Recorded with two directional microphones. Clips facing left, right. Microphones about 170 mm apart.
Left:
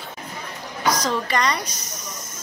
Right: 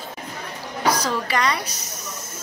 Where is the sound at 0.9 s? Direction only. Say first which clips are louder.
Even; 10° right (ahead or behind).